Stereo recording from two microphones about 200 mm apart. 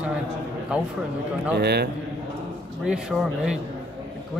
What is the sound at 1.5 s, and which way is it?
Speech, 55° right (ahead or behind).